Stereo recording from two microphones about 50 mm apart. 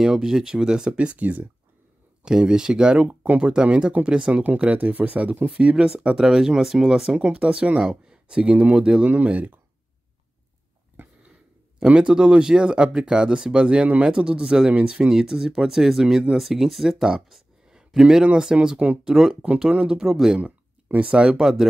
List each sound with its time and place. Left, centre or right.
0.0 s speech: centre; by 1.4 s right
2.2 s speech: centre; by 5.5 s right
5.6 s speech: centre
9.0 s speech: right
11.8 s speech: right
19.0 s speech: centre
20.3 s a sound: right
21.2 s speech: centre